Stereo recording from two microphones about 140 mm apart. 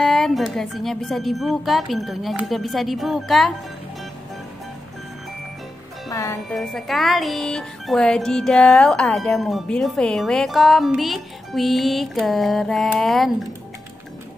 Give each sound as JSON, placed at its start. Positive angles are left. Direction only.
{"t": 0.0, "sound": "speech", "side_deg": 0}
{"t": 6.0, "sound": "speech", "side_deg": 25}
{"t": 6.5, "sound": "speech", "side_deg": 5}